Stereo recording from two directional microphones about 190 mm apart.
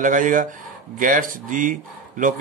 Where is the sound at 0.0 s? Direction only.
45° right (ahead or behind).